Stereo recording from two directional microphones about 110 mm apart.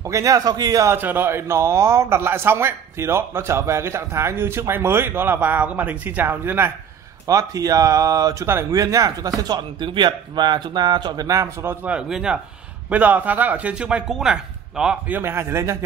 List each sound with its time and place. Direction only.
0.0 s speech: 30° right (ahead or behind)
0.9 s a man's voice: 20° right (ahead or behind)
7.2 s speech: 30° right (ahead or behind)
11.9 s speech: 5° right (ahead or behind)
15.1 s a man's voice: 20° right (ahead or behind)